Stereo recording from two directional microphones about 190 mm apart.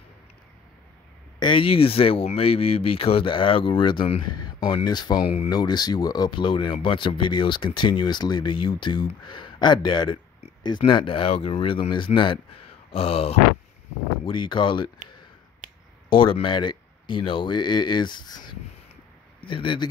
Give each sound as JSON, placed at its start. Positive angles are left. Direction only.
{"t": 1.4, "sound": "speech", "side_deg": 25}
{"t": 12.9, "sound": "grunt", "side_deg": 30}
{"t": 14.2, "sound": "speech", "side_deg": 25}
{"t": 16.1, "sound": "speech", "side_deg": 30}